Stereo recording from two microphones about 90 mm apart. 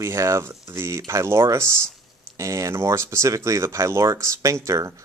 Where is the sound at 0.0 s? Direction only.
35° right (ahead or behind).